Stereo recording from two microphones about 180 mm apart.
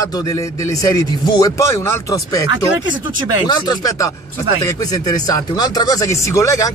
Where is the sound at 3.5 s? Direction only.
20° left (ahead or behind).